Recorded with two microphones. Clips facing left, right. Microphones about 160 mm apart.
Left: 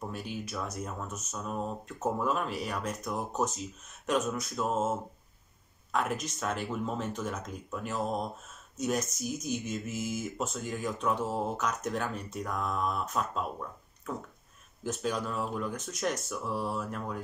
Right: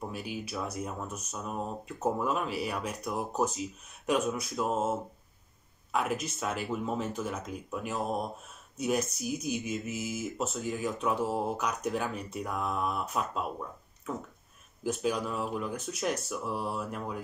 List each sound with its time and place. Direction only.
0.1 s speech: 5° right (ahead or behind)